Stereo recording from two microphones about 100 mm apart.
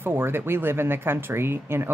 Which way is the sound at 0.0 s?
20° right (ahead or behind).